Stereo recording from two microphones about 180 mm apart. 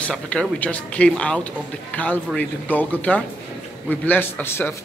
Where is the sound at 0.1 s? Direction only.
5° left (ahead or behind).